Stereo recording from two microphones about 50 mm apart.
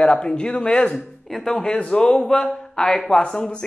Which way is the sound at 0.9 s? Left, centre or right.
Centre.